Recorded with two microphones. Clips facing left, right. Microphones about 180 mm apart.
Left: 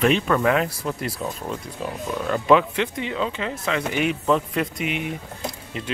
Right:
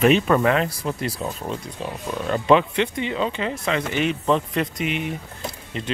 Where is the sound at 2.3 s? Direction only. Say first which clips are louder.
Right 1 dB; centre (ahead or behind).